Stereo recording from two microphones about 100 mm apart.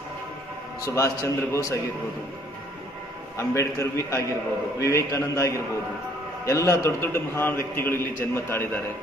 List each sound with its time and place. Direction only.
0.8 s a man's voice: 30° left (ahead or behind)
3.3 s a man's voice: 30° left (ahead or behind)